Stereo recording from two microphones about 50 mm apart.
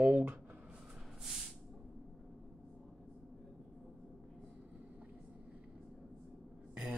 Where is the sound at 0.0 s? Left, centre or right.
Right.